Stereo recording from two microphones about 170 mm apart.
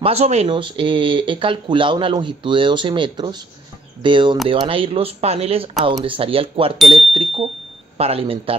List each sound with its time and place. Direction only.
0.0 s speech: 40° right (ahead or behind)